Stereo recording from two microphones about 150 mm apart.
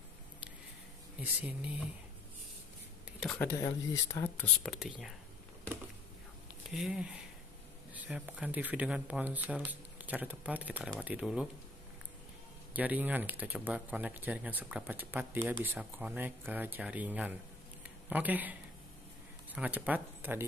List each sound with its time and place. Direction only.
3.3 s speech: 15° left (ahead or behind)
4.7 s speech: 5° right (ahead or behind)
6.7 s speech: centre (ahead or behind)
12.7 s speech: 10° right (ahead or behind)